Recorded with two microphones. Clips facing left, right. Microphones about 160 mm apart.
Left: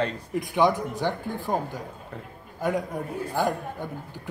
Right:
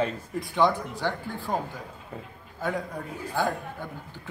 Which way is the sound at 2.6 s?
20° left (ahead or behind).